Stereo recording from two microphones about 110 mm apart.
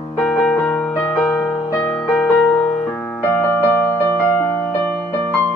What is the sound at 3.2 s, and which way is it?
Music, 20° left (ahead or behind).